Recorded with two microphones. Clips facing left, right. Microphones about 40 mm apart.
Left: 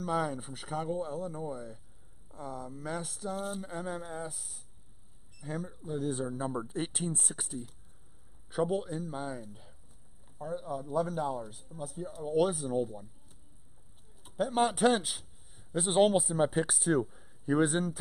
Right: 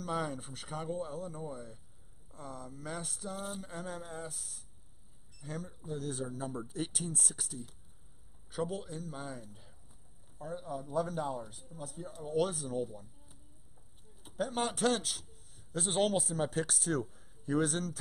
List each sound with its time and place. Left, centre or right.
0.0 s a man's voice: centre; by 7.5 s left
8.5 s a man's voice: centre
14.2 s a man's voice: centre